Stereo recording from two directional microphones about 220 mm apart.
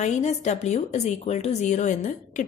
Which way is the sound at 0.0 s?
30° left (ahead or behind).